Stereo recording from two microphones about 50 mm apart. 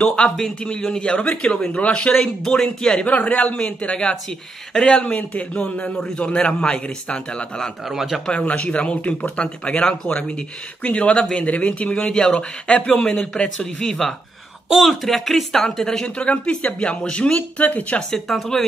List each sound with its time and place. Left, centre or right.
0.0 s a man's voice: centre
2.1 s a man's voice: centre
5.1 s a man's voice: left
5.9 s a man's voice: centre
7.8 s speech: centre
8.3 s a man's voice: left
13.4 s a man's voice: left
13.7 s a man's voice: centre
14.7 s speech: centre
16.3 s a man's voice: left
18.1 s speech: centre